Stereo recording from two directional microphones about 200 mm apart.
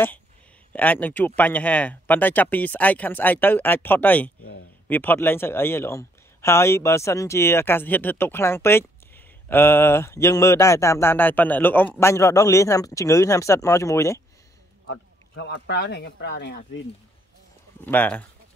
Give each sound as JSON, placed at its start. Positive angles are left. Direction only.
{"t": 0.7, "sound": "speech", "side_deg": 10}
{"t": 4.4, "sound": "speech", "side_deg": 75}
{"t": 4.8, "sound": "speech", "side_deg": 10}
{"t": 14.9, "sound": "speech", "side_deg": 60}
{"t": 17.8, "sound": "speech", "side_deg": 10}